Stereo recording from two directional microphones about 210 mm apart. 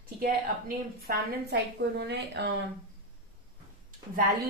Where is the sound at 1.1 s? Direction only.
45° right (ahead or behind).